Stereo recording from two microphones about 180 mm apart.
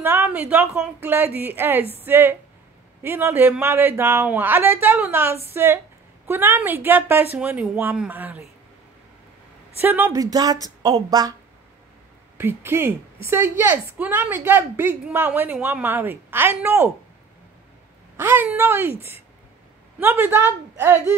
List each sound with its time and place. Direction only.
0.0 s a woman's voice: 10° right (ahead or behind)
9.8 s speech: 10° right (ahead or behind)
12.4 s a woman's voice: 15° right (ahead or behind)
18.1 s a woman's voice: 15° right (ahead or behind)
20.0 s a woman's voice: 10° right (ahead or behind)